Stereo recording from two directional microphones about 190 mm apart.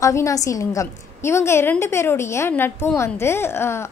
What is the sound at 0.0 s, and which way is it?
A woman's voice, 15° left (ahead or behind).